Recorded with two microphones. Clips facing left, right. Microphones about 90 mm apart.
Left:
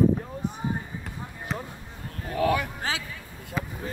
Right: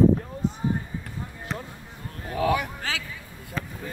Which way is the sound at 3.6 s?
10° left (ahead or behind).